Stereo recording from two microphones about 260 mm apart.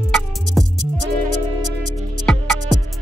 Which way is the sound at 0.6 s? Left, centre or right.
Centre.